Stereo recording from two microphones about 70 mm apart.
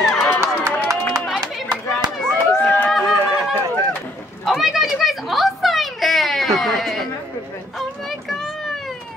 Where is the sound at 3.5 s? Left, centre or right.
Right.